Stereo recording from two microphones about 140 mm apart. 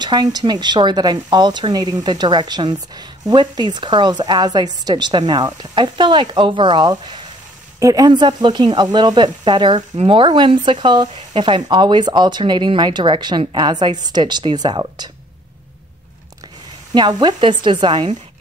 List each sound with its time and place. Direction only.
0.0 s speech: 30° right (ahead or behind)
16.9 s speech: 30° right (ahead or behind)